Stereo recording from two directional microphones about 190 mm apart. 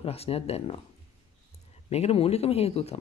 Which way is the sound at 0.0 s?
30° left (ahead or behind).